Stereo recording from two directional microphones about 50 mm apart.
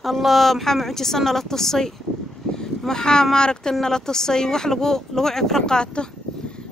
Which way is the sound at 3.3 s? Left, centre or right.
Centre.